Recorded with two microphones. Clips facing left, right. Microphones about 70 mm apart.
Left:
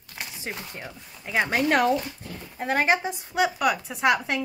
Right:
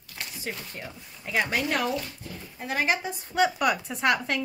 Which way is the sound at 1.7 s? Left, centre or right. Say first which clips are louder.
Left 6 dB; left.